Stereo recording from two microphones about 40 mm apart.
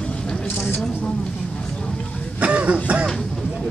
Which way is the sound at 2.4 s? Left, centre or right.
Right.